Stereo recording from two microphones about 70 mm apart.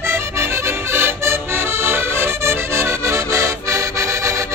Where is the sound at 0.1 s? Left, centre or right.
Right.